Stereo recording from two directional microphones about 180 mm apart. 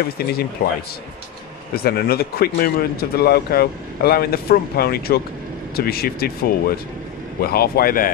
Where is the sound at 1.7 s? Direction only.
60° left (ahead or behind).